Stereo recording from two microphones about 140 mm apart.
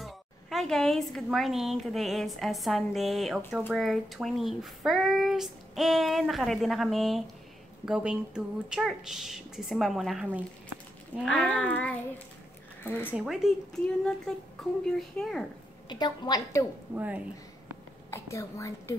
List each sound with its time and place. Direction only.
0.0 s speech: centre (ahead or behind)
11.2 s speech: 5° left (ahead or behind)
13.1 s speech: 5° right (ahead or behind)
15.9 s a woman's voice: 30° left (ahead or behind)
16.9 s a woman's voice: 10° right (ahead or behind)
18.1 s a woman's voice: 20° left (ahead or behind)